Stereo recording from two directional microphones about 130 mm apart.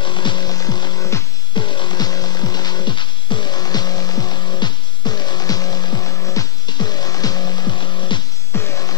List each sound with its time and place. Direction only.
0.0 s music: 35° left (ahead or behind)
8.5 s music: 20° left (ahead or behind)